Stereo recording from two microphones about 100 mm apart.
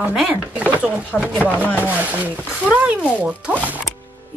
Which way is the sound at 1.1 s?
10° left (ahead or behind).